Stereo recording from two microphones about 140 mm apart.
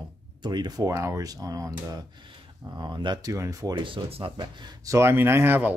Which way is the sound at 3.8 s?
35° right (ahead or behind).